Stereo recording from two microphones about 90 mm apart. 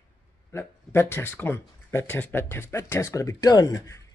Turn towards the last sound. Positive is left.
turn(degrees=40)  # may be behind; listen again after turning